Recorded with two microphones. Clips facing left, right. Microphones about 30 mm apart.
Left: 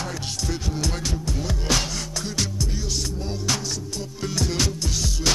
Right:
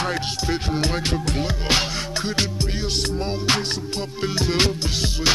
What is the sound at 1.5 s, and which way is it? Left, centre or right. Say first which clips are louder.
Music: right 1 dB; right.